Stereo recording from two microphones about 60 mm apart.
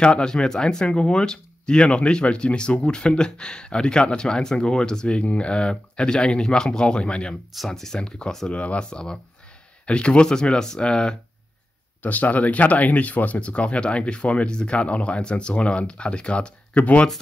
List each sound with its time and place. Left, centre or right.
0.0 s speech: centre
7.5 s speech: centre
12.0 s speech: left